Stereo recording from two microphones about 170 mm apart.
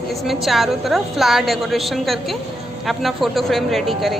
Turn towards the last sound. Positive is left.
turn(degrees=0)  # may be behind; listen again after turning